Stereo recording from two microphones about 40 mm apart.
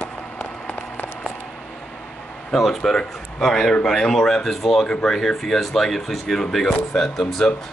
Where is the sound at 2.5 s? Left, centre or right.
Centre.